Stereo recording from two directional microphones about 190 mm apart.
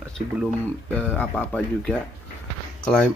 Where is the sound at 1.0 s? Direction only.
10° left (ahead or behind).